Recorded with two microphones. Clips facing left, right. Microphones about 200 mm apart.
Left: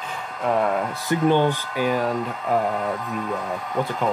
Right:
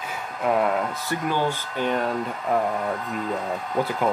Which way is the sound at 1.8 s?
5° left (ahead or behind).